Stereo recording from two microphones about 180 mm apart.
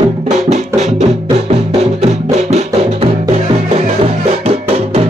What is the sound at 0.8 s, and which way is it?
Music, 40° right (ahead or behind).